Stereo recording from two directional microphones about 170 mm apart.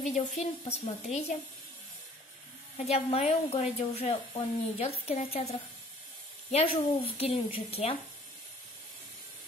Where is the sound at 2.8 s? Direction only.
35° left (ahead or behind).